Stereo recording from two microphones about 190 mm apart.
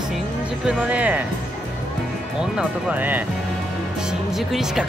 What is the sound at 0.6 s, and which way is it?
Speech, 5° right (ahead or behind).